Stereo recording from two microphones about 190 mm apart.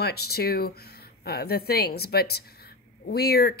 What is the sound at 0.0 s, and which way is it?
Speech, 55° left (ahead or behind).